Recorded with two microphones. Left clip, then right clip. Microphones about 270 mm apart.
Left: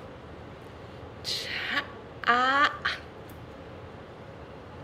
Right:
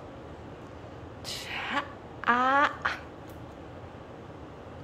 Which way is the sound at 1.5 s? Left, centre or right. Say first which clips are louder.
Right 2 dB; centre.